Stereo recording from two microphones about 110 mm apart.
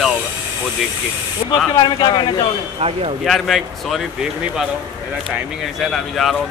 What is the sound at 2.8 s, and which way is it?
Speech, 60° right (ahead or behind).